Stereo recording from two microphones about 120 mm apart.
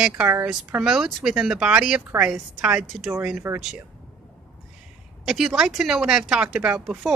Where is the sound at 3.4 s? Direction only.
20° right (ahead or behind).